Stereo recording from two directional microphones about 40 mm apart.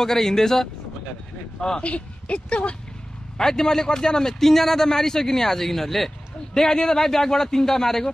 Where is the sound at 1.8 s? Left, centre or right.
Left.